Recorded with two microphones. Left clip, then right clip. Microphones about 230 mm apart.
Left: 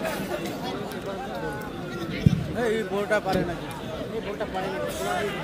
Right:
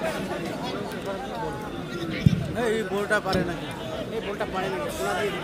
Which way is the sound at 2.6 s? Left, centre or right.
Centre.